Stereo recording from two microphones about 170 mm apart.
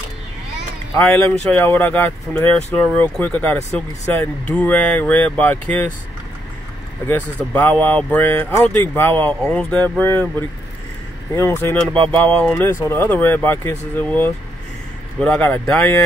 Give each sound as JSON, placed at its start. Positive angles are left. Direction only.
{"t": 0.9, "sound": "speech", "side_deg": 5}
{"t": 7.8, "sound": "speech", "side_deg": 10}
{"t": 11.3, "sound": "speech", "side_deg": 15}
{"t": 11.9, "sound": "a sound", "side_deg": -30}
{"t": 12.2, "sound": "speech", "side_deg": 5}
{"t": 15.1, "sound": "speech", "side_deg": 5}